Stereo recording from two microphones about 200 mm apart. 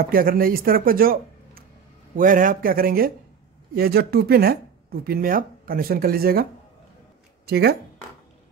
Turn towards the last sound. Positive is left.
turn(degrees=-50)  # may be behind; listen again after turning